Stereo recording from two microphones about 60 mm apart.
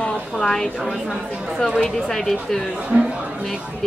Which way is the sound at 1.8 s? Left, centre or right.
Centre.